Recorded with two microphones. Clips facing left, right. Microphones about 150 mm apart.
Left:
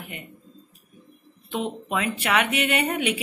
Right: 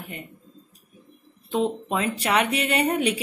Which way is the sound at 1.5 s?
35° right (ahead or behind).